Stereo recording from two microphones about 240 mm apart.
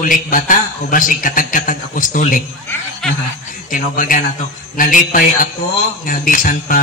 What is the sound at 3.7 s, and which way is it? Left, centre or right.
A man's voice, left.